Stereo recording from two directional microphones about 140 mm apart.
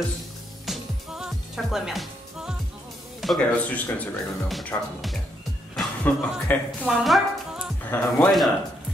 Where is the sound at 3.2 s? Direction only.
5° left (ahead or behind).